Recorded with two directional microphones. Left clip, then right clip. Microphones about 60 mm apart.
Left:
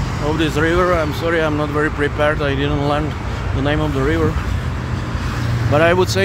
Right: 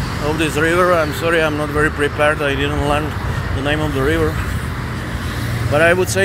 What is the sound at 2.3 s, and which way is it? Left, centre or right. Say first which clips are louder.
Speech: right 1 dB; left.